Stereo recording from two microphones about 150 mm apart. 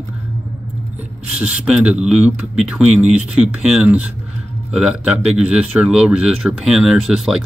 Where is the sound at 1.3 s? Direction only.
10° right (ahead or behind).